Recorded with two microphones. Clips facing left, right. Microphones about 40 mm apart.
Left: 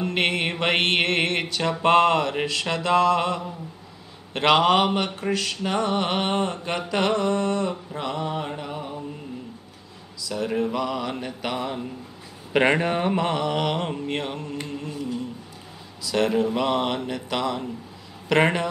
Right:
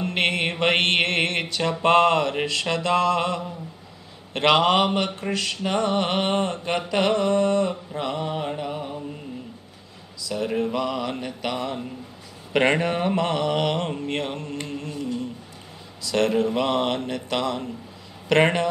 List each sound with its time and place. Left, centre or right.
0.0 s mantra: centre
10.2 s mantra: centre
14.8 s humming: centre
16.1 s mantra: centre